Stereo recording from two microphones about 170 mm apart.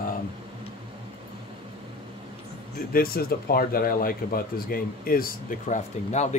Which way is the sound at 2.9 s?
60° left (ahead or behind).